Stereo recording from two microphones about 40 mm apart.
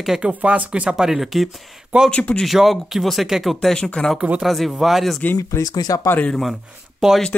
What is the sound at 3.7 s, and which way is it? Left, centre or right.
Speech, left.